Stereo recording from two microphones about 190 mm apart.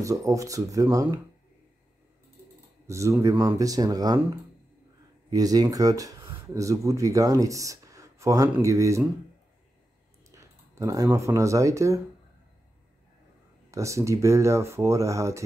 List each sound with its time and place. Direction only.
0.0 s speech: 15° right (ahead or behind)
2.9 s speech: 15° right (ahead or behind)
5.3 s speech: 20° right (ahead or behind)
10.3 s speech: 15° right (ahead or behind)
13.7 s speech: 15° right (ahead or behind)